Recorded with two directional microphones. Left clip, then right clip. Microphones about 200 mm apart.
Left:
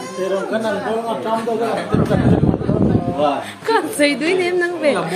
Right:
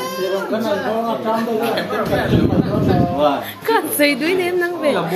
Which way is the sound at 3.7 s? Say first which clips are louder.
Even; centre (ahead or behind).